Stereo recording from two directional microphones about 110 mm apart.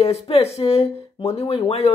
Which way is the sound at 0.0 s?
70° left (ahead or behind).